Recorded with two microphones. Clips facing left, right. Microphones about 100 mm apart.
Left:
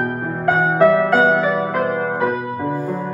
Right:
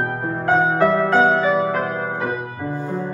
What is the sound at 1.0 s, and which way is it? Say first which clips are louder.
Music: left 1 dB; 5° left (ahead or behind).